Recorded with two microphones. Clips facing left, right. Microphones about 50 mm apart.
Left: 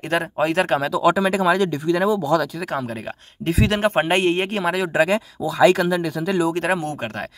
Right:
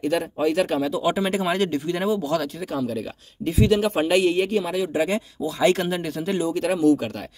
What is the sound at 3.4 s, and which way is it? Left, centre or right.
Speech, left.